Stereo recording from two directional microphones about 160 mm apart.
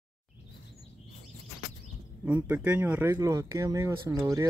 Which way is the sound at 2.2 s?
10° right (ahead or behind).